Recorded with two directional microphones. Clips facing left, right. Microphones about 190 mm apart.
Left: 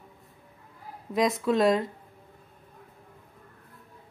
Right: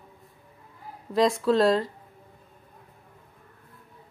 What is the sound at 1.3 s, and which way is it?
Speech, 20° left (ahead or behind).